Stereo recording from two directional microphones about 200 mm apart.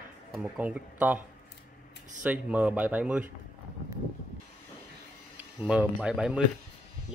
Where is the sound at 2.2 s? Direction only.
5° right (ahead or behind).